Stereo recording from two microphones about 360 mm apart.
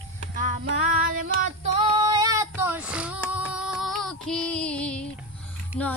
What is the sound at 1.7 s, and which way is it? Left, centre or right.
Female singing, centre.